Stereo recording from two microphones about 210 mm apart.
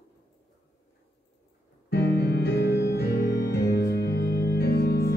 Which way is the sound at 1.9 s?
50° left (ahead or behind).